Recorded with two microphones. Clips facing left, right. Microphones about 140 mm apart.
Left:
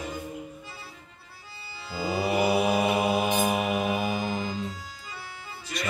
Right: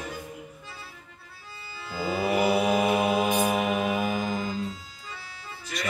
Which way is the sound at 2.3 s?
5° left (ahead or behind).